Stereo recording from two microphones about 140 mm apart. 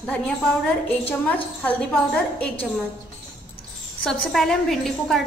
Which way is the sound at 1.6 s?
10° left (ahead or behind).